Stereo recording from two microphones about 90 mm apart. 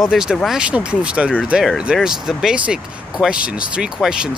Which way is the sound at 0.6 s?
10° right (ahead or behind).